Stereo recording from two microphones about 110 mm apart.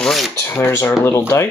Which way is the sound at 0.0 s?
Centre (ahead or behind).